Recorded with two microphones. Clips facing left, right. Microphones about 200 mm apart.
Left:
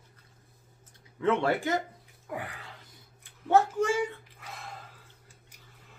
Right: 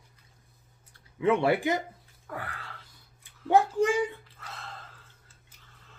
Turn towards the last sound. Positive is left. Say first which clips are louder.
# left 2 dB
turn(degrees=10)  # may be behind; listen again after turning